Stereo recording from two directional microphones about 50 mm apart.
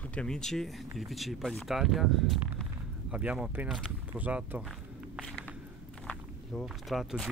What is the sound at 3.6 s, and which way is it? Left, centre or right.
Speech, right.